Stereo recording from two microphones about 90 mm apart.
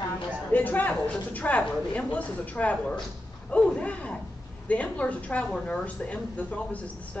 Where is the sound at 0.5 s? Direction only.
20° left (ahead or behind).